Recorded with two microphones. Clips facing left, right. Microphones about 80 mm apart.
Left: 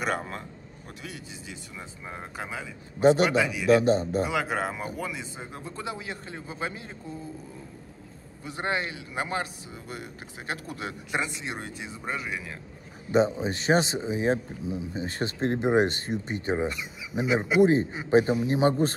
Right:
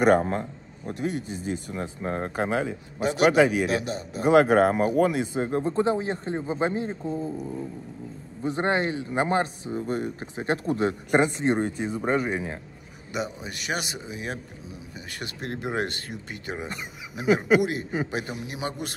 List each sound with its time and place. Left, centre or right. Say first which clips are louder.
0.0 s a man's voice: right 10 dB; right
3.0 s speech: left 4 dB; left
3.3 s a man's voice: right 7 dB; right
3.6 s speech: left 7 dB; left
4.2 s a man's voice: right 10 dB; right
8.4 s a man's voice: right 5 dB; right
13.1 s speech: left 8 dB; left